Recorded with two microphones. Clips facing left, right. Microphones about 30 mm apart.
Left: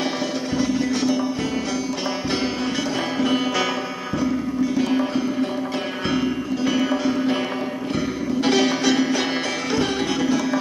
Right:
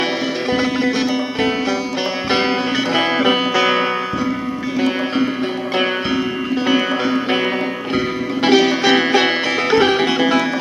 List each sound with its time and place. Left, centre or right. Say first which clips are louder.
0.5 s music: right 5 dB; right
2.2 s music: right 8 dB; right
6.5 s music: right 5 dB; right
8.8 s music: right 6 dB; right